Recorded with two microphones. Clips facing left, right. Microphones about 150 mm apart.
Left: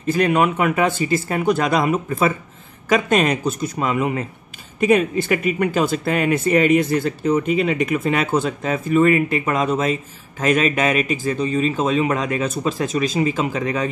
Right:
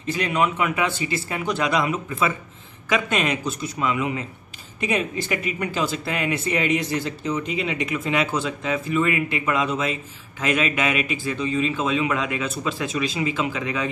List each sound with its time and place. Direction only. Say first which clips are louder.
0.0 s speech: left 6 dB; 50° left (ahead or behind)